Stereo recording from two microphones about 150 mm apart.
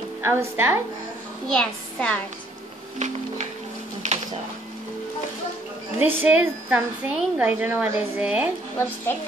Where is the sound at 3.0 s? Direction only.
50° right (ahead or behind).